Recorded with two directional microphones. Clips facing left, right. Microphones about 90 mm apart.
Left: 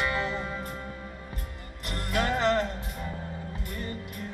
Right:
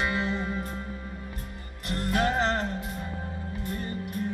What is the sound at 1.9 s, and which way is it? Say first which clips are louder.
Music: right 2 dB; 35° right (ahead or behind).